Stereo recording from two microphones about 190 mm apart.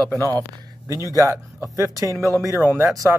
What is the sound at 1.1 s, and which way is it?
Speech, 15° right (ahead or behind).